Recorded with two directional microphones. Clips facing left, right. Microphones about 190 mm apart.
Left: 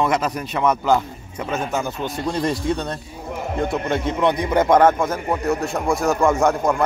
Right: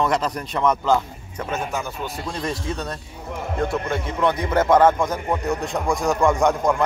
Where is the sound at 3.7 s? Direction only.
20° left (ahead or behind); by 6.8 s 5° left (ahead or behind).